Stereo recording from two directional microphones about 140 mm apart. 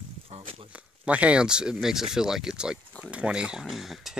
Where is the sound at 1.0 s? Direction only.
10° right (ahead or behind).